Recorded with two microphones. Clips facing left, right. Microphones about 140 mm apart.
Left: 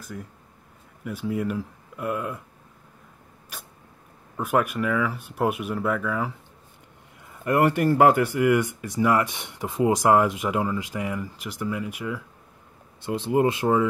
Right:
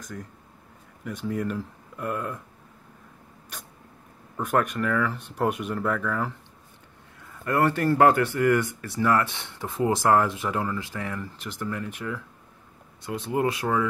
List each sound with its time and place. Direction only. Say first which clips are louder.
0.0 s speech: left 1 dB; 5° left (ahead or behind)
4.4 s speech: left 1 dB; 10° left (ahead or behind)
7.4 s speech: left 2 dB; 15° left (ahead or behind)
13.0 s speech: left 4 dB; 25° left (ahead or behind)